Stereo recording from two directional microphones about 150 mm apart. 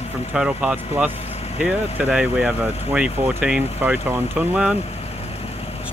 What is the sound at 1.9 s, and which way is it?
Speech, 10° right (ahead or behind).